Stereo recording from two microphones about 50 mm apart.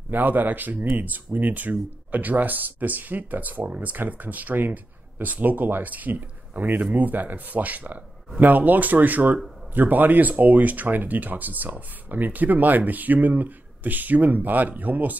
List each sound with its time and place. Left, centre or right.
0.1 s speech: right